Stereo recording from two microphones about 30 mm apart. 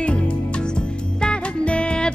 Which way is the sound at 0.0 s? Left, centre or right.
Left.